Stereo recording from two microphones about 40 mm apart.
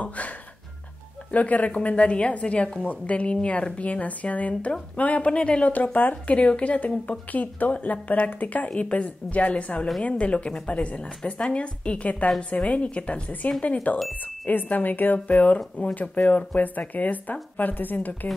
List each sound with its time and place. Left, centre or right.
1.3 s speech: left
5.9 s speech: left
13.9 s a woman's voice: left
15.2 s a woman's voice: left